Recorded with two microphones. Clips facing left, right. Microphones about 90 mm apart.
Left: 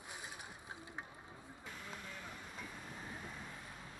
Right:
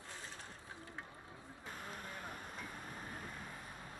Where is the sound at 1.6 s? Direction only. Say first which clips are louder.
Right 2 dB; 45° right (ahead or behind).